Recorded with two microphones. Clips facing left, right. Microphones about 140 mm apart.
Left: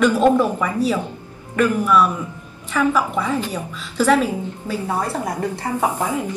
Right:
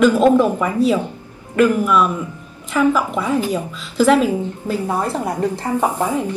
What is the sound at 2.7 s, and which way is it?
Speech, 10° right (ahead or behind).